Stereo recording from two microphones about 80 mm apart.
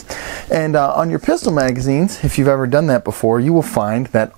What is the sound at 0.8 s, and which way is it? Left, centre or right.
Speech, right.